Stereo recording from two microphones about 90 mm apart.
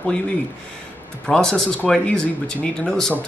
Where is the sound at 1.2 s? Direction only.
10° left (ahead or behind).